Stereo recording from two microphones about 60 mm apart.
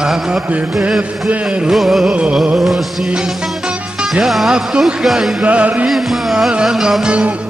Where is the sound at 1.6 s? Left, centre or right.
Centre.